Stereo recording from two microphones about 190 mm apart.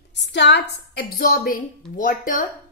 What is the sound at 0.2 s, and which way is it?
A woman's voice, 65° left (ahead or behind).